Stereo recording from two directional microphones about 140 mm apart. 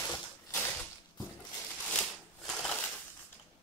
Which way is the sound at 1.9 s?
5° left (ahead or behind).